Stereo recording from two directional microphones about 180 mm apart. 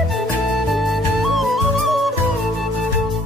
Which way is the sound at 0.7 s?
Centre (ahead or behind).